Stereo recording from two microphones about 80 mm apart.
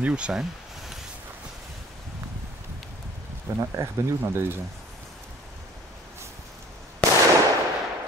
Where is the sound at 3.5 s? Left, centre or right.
Right.